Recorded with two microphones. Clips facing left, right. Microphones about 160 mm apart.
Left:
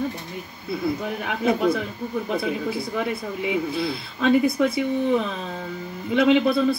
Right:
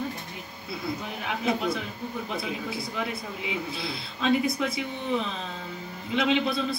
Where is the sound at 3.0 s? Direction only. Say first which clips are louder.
Left 6 dB; 55° left (ahead or behind).